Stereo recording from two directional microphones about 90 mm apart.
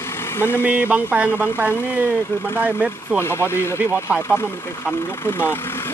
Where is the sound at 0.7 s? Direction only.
20° right (ahead or behind).